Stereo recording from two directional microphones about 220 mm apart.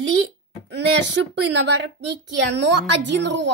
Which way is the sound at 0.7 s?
50° right (ahead or behind).